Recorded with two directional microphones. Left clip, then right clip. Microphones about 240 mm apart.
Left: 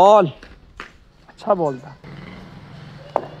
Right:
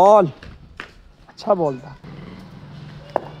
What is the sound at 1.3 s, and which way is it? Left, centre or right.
Speech, centre.